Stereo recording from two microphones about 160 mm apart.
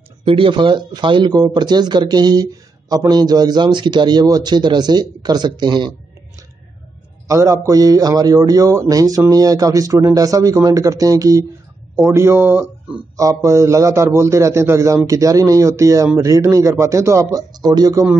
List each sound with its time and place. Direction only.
0.2 s speech: 35° right (ahead or behind)
7.2 s speech: 20° right (ahead or behind)